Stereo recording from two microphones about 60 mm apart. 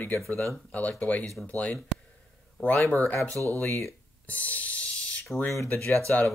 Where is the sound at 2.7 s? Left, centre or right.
Left.